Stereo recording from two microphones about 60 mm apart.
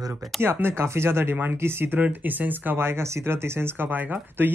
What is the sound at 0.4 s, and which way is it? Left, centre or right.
Speech, right.